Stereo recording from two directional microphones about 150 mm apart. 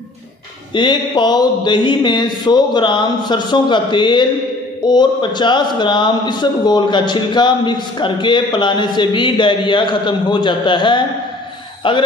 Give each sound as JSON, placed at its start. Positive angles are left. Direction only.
{"t": 0.7, "sound": "a man's voice", "side_deg": 30}